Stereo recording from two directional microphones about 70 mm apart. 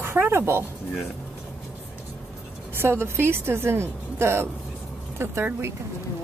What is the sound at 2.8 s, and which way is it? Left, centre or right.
Speech, right.